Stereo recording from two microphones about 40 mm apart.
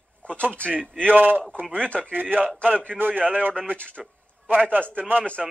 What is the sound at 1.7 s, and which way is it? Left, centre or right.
Speech, left.